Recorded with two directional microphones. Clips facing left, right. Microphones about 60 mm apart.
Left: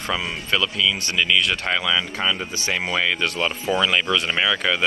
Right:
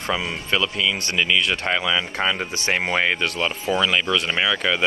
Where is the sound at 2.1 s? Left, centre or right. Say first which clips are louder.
Right 1 dB; right.